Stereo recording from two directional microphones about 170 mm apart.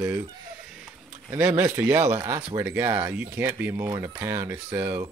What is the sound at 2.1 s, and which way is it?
Speech, 25° right (ahead or behind).